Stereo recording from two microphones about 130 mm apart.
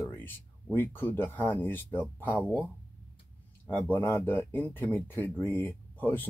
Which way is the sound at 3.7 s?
15° left (ahead or behind).